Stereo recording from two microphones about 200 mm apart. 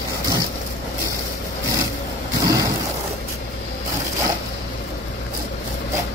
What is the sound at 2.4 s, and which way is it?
Vehicle, 20° right (ahead or behind).